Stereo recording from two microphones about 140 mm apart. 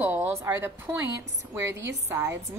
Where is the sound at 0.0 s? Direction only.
15° right (ahead or behind).